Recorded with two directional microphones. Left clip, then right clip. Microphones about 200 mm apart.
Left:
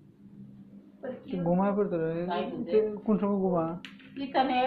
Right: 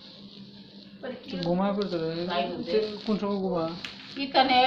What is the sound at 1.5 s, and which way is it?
Speech, 20° left (ahead or behind).